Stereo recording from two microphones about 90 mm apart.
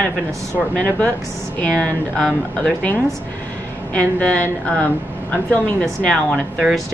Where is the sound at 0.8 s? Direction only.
15° left (ahead or behind).